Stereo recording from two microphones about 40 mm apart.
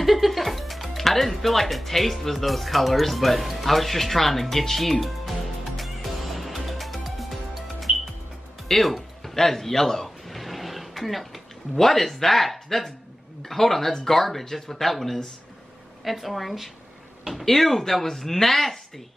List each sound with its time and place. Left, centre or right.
0.0 s speech: centre
5.8 s music: centre
11.7 s speech: centre